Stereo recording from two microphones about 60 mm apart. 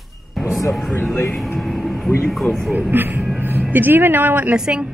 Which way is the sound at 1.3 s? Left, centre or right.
Centre.